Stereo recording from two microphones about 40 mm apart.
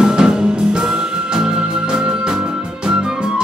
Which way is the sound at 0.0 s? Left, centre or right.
Centre.